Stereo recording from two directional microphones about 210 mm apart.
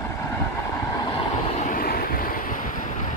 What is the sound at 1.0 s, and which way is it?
Vehicle, 25° left (ahead or behind).